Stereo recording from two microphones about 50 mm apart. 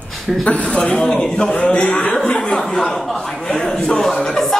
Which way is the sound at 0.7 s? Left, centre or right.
Centre.